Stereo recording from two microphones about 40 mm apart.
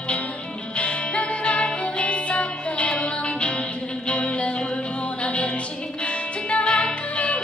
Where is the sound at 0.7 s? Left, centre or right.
Left.